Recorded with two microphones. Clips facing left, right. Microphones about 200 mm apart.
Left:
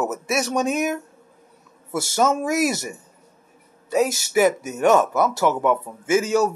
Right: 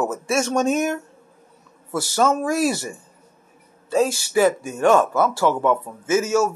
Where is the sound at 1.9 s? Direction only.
25° left (ahead or behind).